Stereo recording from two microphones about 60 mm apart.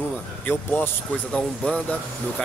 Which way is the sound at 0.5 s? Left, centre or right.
Left.